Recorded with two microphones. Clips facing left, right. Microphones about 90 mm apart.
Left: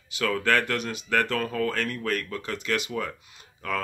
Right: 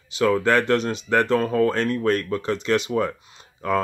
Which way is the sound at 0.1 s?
25° right (ahead or behind).